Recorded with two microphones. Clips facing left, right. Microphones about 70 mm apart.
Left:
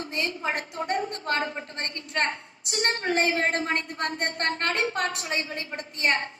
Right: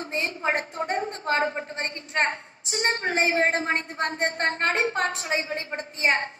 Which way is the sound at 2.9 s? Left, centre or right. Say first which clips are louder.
Right 1 dB; right.